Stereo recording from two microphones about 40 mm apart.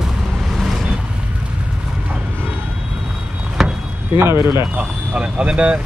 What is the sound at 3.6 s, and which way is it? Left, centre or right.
Chop, centre.